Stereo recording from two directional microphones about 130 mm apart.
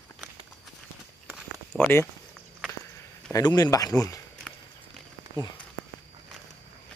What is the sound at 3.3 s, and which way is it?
Speech, 30° left (ahead or behind).